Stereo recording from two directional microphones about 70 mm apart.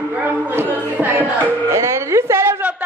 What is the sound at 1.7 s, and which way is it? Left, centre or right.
Speech, right.